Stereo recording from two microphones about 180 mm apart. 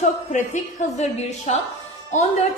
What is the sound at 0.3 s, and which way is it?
A woman's voice, 45° left (ahead or behind).